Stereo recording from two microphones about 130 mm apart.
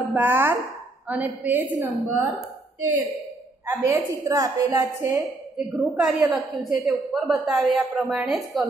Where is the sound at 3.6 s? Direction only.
25° right (ahead or behind).